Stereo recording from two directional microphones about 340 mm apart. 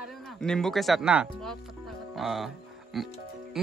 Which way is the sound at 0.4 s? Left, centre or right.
Centre.